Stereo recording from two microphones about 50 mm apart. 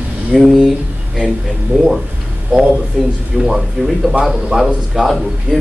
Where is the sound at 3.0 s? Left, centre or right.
Centre.